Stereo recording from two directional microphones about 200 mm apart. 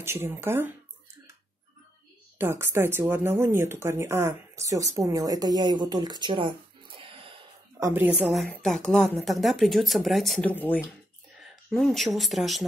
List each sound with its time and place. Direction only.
0.0 s speech: 10° right (ahead or behind)
2.3 s speech: 10° right (ahead or behind); by 7.9 s 25° right (ahead or behind)
7.9 s a woman's voice: 10° right (ahead or behind)